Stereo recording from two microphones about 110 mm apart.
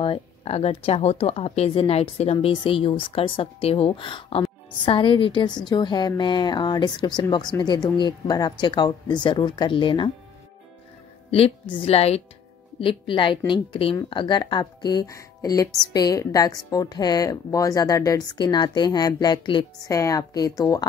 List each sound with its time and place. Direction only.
0.0 s speech: 55° left (ahead or behind)
2.4 s a woman's voice: 50° left (ahead or behind)
11.2 s a woman's voice: 60° left (ahead or behind)
12.8 s a woman's voice: 50° left (ahead or behind)
19.9 s speech: 30° left (ahead or behind)